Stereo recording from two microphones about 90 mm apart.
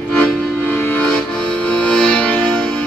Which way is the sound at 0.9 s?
15° left (ahead or behind).